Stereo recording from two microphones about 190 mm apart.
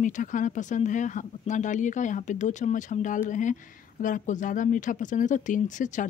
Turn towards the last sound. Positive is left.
turn(degrees=40)  # may be behind; listen again after turning